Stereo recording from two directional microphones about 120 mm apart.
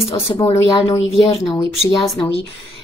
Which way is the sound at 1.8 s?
50° left (ahead or behind).